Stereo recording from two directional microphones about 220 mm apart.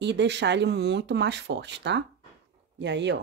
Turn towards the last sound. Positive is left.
turn(degrees=-50)  # may be behind; listen again after turning